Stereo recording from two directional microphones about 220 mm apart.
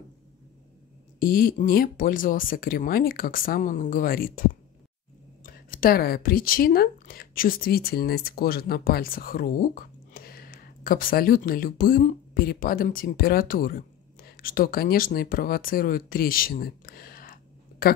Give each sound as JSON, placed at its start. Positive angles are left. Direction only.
{"t": 1.2, "sound": "speech", "side_deg": 40}
{"t": 5.4, "sound": "speech", "side_deg": 40}